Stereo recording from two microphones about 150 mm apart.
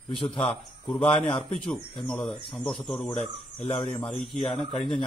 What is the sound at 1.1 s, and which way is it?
Speech, 35° left (ahead or behind).